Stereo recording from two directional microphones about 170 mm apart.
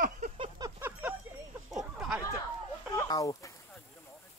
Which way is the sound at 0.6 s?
15° right (ahead or behind).